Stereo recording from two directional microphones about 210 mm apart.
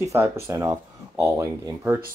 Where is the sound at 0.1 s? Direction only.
15° right (ahead or behind).